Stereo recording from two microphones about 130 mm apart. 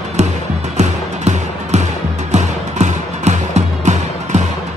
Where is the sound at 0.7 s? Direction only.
60° right (ahead or behind).